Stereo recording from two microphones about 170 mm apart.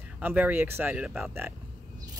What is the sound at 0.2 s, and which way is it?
Speech, 10° right (ahead or behind).